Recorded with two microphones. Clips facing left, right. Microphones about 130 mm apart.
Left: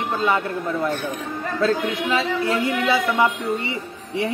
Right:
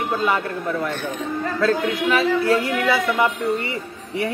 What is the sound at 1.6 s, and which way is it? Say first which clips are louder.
Speech: right 1 dB; 20° left (ahead or behind).